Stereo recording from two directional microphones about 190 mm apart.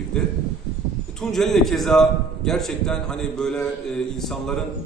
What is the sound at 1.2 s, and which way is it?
A man's voice, centre (ahead or behind).